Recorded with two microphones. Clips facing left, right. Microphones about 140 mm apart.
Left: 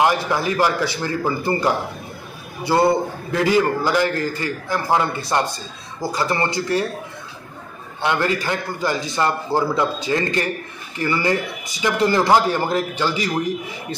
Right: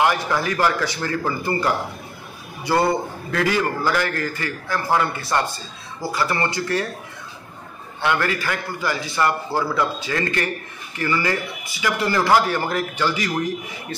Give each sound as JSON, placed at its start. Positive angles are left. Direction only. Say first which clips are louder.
{"t": 0.0, "sound": "a man's voice", "louder": "left 2 dB", "side_deg": 20}
{"t": 2.7, "sound": "a man's voice", "louder": "left 3 dB", "side_deg": 20}
{"t": 8.0, "sound": "a man's voice", "louder": "left 1 dB", "side_deg": 20}